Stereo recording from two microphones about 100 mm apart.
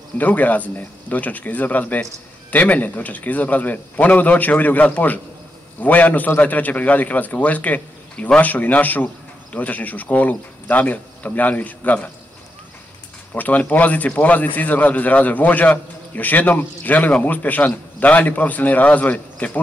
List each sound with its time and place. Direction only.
0.2 s a man's voice: 15° left (ahead or behind)
13.3 s a man's voice: 15° left (ahead or behind)